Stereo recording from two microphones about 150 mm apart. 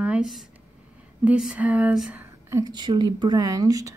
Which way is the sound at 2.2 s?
20° right (ahead or behind).